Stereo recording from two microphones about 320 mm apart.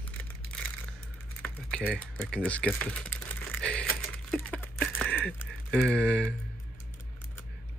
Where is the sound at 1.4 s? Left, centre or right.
Centre.